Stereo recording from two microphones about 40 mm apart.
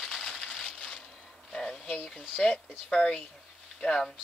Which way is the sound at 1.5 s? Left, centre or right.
Left.